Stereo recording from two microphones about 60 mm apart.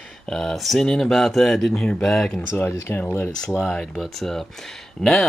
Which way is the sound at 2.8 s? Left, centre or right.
Left.